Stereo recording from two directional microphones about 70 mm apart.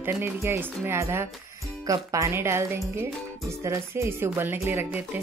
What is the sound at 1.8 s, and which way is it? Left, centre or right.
Speech, right.